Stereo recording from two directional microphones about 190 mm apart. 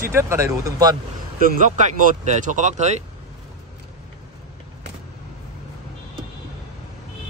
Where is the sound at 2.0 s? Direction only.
40° right (ahead or behind).